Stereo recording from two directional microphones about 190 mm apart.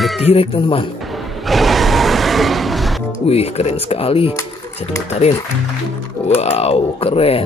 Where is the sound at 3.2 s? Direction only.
30° left (ahead or behind).